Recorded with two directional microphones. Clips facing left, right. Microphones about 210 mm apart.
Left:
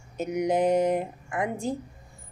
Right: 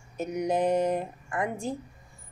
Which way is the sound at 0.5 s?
20° left (ahead or behind).